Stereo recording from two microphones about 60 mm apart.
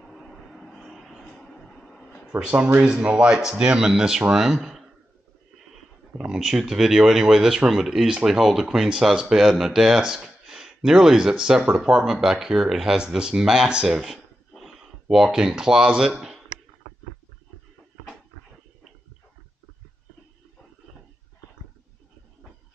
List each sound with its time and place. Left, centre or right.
0.0 s vehicle: centre
2.3 s speech: centre
6.1 s speech: centre
14.5 s a sound: centre